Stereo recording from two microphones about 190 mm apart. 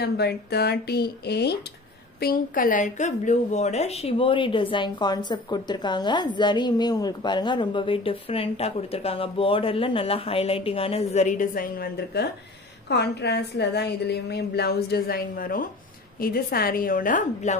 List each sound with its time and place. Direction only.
0.0 s a woman's voice: 60° left (ahead or behind); by 17.6 s 40° left (ahead or behind)